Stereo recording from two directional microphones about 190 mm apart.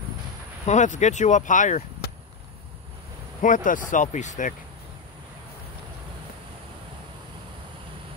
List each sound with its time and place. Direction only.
0.7 s speech: 40° left (ahead or behind)
3.4 s speech: 45° left (ahead or behind)